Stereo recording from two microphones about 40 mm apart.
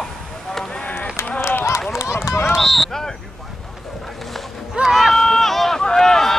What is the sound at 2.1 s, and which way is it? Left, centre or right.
Run, left.